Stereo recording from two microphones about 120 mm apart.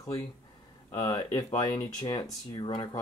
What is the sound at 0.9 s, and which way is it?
Speech, 35° left (ahead or behind).